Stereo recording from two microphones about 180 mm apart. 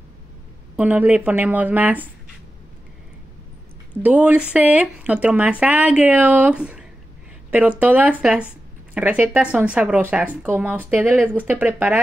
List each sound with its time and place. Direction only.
0.7 s speech: 10° right (ahead or behind)
4.0 s speech: 10° right (ahead or behind)